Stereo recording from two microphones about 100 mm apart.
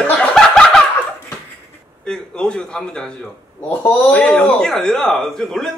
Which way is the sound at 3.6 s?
30° left (ahead or behind).